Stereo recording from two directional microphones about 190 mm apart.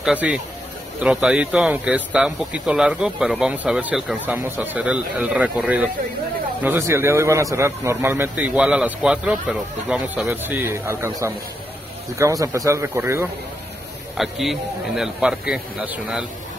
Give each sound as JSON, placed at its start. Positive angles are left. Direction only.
{"t": 0.0, "sound": "a man's voice", "side_deg": -5}
{"t": 14.1, "sound": "speech", "side_deg": 0}